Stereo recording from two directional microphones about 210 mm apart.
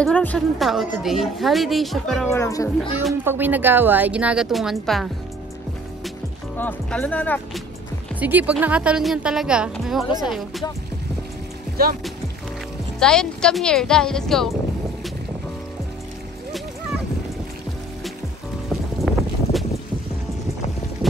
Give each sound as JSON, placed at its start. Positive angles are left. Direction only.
{"t": 0.0, "sound": "a woman's voice", "side_deg": 5}
{"t": 2.2, "sound": "speech", "side_deg": 15}
{"t": 2.8, "sound": "a woman's voice", "side_deg": 0}
{"t": 6.6, "sound": "speech", "side_deg": 5}
{"t": 8.2, "sound": "a woman's voice", "side_deg": -5}
{"t": 11.7, "sound": "speech", "side_deg": -45}
{"t": 13.0, "sound": "a woman's voice", "side_deg": 5}
{"t": 18.7, "sound": "boat", "side_deg": 0}